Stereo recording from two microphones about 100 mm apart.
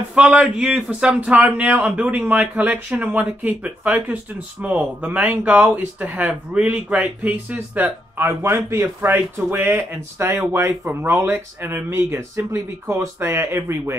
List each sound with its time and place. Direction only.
0.1 s speech: 10° right (ahead or behind)